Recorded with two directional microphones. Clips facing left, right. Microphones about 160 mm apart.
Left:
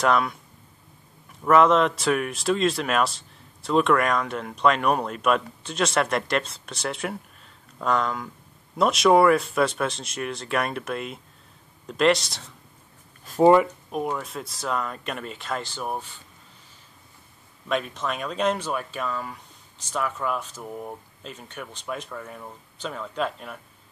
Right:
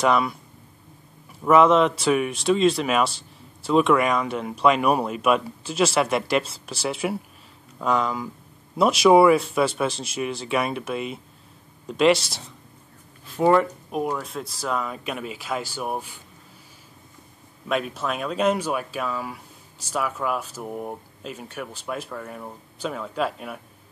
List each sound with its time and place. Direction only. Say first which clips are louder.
0.0 s speech: right 1 dB; centre (ahead or behind)
1.4 s speech: right 2 dB; 5° right (ahead or behind)
13.2 s a sound: left 4 dB; 45° left (ahead or behind)
13.9 s speech: right 2 dB; 5° right (ahead or behind)
17.6 s speech: right 1 dB; 5° right (ahead or behind)